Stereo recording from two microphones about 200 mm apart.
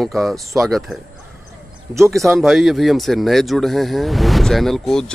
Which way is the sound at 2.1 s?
Centre (ahead or behind).